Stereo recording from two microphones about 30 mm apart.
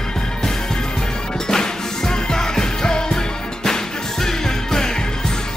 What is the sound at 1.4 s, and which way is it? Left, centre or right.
Music, left.